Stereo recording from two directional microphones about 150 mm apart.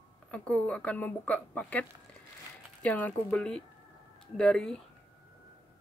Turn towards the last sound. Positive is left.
turn(degrees=5)  # may be behind; listen again after turning